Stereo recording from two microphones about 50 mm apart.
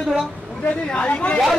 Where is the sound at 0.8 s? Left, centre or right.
Left.